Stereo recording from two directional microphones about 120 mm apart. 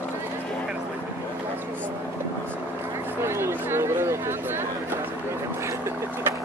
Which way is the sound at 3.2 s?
20° right (ahead or behind).